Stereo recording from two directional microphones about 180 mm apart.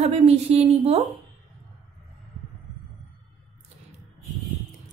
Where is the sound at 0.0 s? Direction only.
35° right (ahead or behind).